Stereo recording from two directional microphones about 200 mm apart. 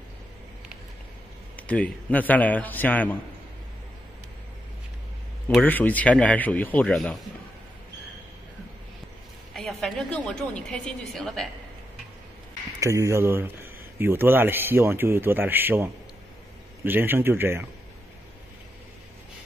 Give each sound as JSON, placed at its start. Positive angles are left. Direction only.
{"t": 1.6, "sound": "a man's voice", "side_deg": 5}
{"t": 5.6, "sound": "a man's voice", "side_deg": 10}
{"t": 9.5, "sound": "a woman's voice", "side_deg": 0}
{"t": 12.8, "sound": "a man's voice", "side_deg": -15}